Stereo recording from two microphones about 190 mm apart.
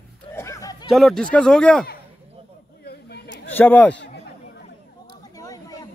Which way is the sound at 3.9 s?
65° left (ahead or behind).